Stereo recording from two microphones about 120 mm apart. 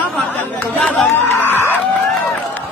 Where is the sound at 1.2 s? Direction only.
15° left (ahead or behind).